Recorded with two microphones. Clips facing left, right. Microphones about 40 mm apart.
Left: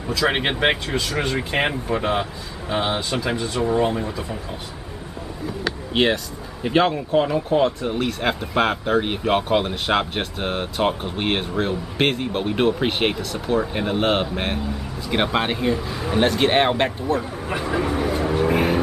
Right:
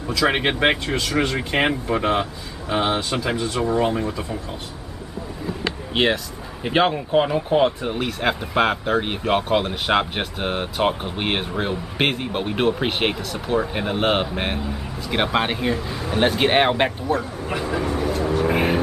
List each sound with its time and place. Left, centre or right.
0.1 s speech: centre
5.9 s speech: centre
6.6 s speech: centre
17.2 s vehicle: centre
18.5 s vehicle: centre